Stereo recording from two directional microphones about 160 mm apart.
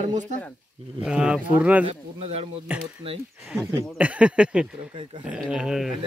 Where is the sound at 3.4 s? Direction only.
15° right (ahead or behind).